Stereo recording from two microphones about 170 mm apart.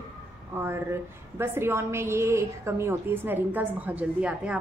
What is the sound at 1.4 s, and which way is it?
A woman's voice, 15° right (ahead or behind).